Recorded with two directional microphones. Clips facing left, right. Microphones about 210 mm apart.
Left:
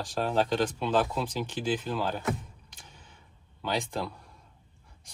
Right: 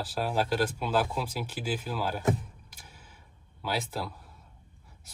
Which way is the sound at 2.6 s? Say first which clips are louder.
Even; 10° right (ahead or behind).